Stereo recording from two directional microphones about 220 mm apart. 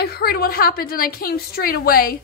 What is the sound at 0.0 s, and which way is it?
Speech, 45° left (ahead or behind).